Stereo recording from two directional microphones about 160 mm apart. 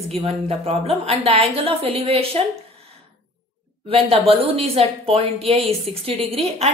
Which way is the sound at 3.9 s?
35° right (ahead or behind).